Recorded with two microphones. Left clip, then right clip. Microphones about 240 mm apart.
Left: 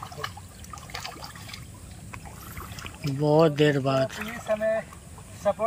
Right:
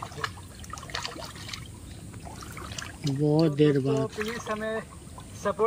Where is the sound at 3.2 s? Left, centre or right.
Centre.